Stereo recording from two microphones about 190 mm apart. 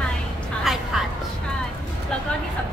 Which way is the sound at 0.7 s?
Centre (ahead or behind).